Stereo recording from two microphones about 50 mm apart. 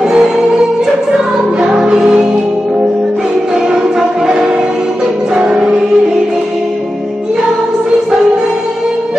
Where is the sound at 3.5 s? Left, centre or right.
Centre.